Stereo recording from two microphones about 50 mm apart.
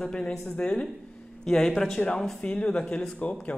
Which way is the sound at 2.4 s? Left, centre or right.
Left.